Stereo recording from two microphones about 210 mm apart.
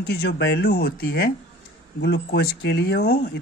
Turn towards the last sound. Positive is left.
turn(degrees=50)  # may be behind; listen again after turning